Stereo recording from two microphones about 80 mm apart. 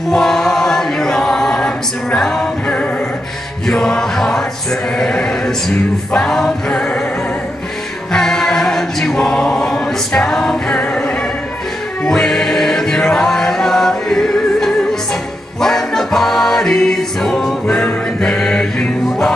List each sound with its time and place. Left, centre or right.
0.1 s choir: centre
3.6 s chant: centre
4.9 s choir: centre
8.1 s choir: centre
12.0 s music: centre
18.2 s chant: centre